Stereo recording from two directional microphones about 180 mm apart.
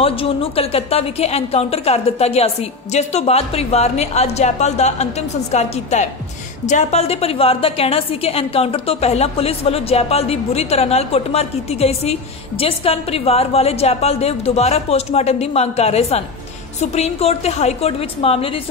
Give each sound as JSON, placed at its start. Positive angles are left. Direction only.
{"t": 0.0, "sound": "a woman's voice", "side_deg": 30}